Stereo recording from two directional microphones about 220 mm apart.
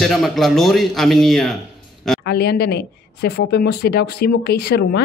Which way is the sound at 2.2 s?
45° left (ahead or behind).